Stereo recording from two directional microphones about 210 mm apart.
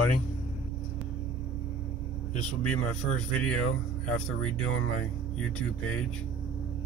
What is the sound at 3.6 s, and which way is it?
Speech, 85° left.